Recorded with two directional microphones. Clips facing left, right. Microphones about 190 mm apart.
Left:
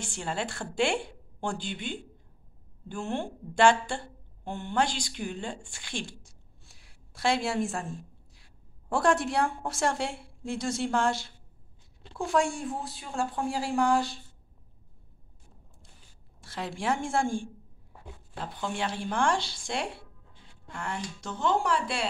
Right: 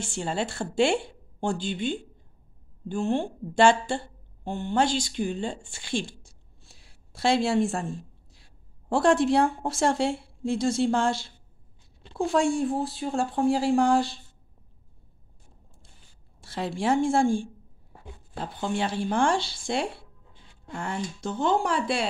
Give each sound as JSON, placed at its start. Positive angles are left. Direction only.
{"t": 0.1, "sound": "a woman's voice", "side_deg": -30}
{"t": 2.9, "sound": "a woman's voice", "side_deg": -30}
{"t": 7.2, "sound": "a woman's voice", "side_deg": -30}
{"t": 8.8, "sound": "a woman's voice", "side_deg": -25}
{"t": 12.2, "sound": "speech", "side_deg": -30}
{"t": 16.4, "sound": "speech", "side_deg": -35}